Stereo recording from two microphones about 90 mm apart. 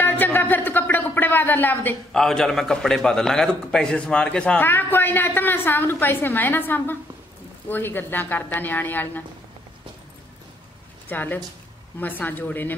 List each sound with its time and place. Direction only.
0.0 s a sound: 20° left (ahead or behind)
2.1 s a man's voice: 5° left (ahead or behind)
4.6 s a woman's voice: 20° left (ahead or behind)
11.1 s a woman's voice: 20° left (ahead or behind)